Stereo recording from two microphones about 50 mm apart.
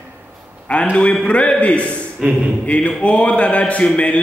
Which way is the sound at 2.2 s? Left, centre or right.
Centre.